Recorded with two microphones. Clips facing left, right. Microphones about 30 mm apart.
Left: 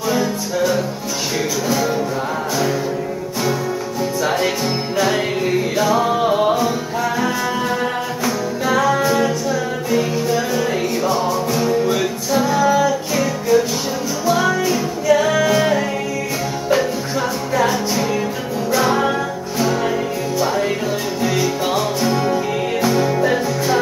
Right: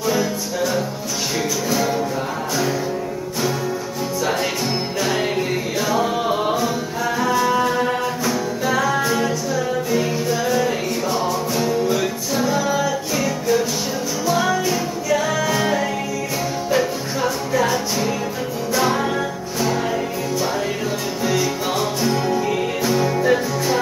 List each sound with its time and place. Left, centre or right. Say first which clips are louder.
0.1 s music: left 4 dB; centre
4.2 s music: left 2 dB; centre
9.2 s music: left 2 dB; centre
9.9 s music: left 5 dB; centre
21.2 s music: left 1 dB; centre